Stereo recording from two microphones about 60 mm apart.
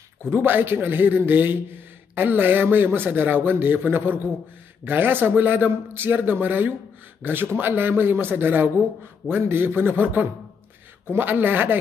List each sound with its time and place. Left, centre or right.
0.3 s a man's voice: right